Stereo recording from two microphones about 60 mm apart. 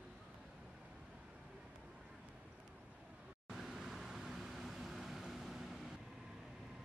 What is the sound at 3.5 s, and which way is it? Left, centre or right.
Vehicle, centre.